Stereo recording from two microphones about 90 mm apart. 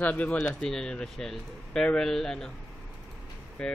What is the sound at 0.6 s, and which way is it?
Speech, 5° left (ahead or behind).